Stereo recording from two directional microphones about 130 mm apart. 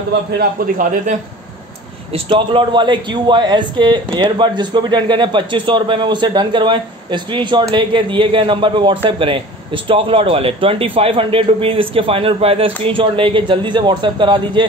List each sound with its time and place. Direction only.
0.7 s speech: 90° right
2.1 s a man's voice: 40° right (ahead or behind)